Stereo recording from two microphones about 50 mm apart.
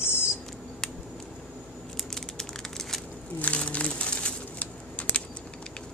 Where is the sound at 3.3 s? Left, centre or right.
Left.